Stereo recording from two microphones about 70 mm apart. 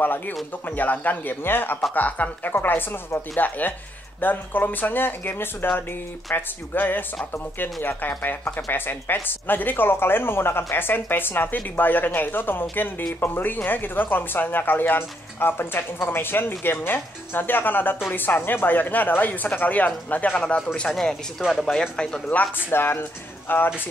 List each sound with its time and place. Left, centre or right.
0.0 s speech: left; by 22.2 s centre
22.7 s speech: left